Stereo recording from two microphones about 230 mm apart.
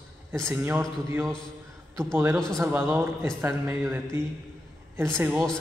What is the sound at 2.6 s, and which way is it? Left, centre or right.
Speech, centre.